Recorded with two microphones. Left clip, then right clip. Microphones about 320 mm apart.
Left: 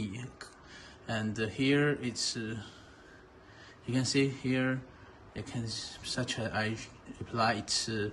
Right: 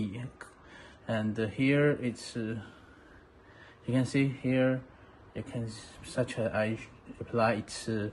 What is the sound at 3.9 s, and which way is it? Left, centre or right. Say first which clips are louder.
Speech: even; centre.